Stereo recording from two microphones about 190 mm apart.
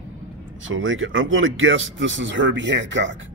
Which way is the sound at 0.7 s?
90° right.